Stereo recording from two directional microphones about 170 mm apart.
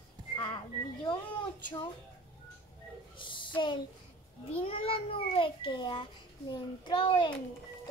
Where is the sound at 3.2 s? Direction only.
30° left (ahead or behind).